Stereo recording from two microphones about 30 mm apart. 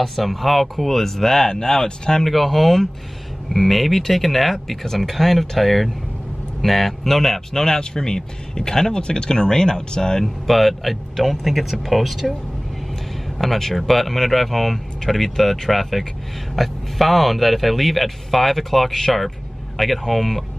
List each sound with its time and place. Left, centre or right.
0.0 s speech: centre
2.2 s speech: centre
7.6 s speech: left
10.2 s speech: centre
13.4 s speech: centre